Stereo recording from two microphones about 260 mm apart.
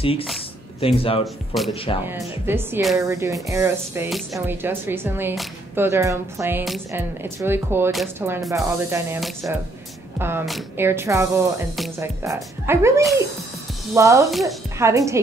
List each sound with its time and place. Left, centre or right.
0.0 s speech: left
1.2 s speech: centre
3.1 s speech: centre